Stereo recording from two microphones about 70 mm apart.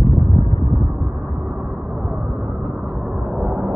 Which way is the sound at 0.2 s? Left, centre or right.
Left.